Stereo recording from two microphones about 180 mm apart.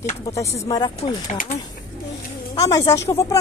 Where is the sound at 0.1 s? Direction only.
20° left (ahead or behind).